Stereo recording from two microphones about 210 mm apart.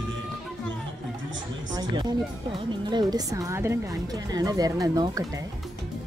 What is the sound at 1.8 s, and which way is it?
A woman's voice, 20° right (ahead or behind).